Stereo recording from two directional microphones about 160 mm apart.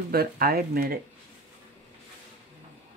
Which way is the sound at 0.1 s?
75° right (ahead or behind).